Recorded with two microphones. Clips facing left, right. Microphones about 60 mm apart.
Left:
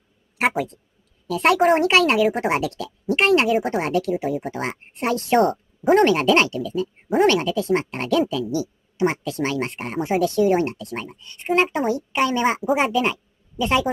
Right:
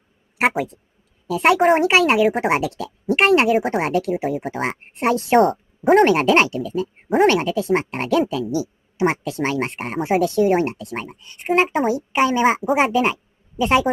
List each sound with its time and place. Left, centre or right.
0.4 s a woman's voice: centre
5.4 s speech: centre
6.0 s speech: right